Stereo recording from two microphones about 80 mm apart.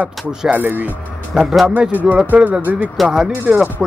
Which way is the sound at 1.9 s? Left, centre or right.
Centre.